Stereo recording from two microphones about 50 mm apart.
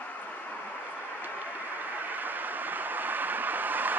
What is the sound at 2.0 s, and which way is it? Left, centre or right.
Vehicle, right.